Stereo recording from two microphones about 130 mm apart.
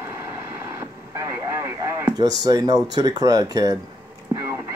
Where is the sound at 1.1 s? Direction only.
20° right (ahead or behind).